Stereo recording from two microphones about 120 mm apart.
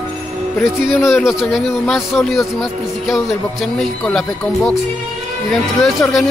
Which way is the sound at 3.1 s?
Centre (ahead or behind).